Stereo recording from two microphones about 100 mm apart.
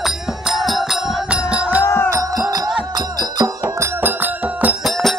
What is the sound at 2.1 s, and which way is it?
Music, 35° right (ahead or behind).